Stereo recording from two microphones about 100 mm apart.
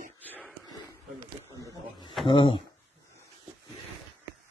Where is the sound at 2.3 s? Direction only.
60° left (ahead or behind).